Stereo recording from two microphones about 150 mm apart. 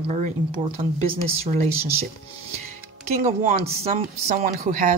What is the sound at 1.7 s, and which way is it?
Speech, 15° right (ahead or behind).